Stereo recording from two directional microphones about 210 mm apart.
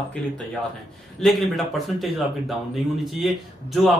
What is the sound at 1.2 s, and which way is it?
A man's voice, centre (ahead or behind).